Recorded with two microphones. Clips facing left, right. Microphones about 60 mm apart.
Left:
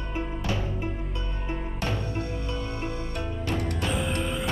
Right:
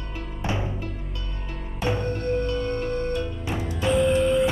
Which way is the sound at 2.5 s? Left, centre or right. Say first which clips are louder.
Right 6 dB; centre.